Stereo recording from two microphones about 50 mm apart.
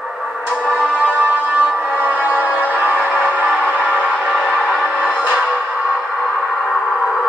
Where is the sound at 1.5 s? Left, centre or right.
Right.